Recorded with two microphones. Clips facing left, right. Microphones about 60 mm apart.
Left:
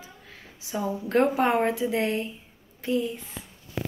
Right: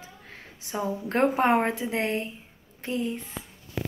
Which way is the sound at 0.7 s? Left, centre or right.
Right.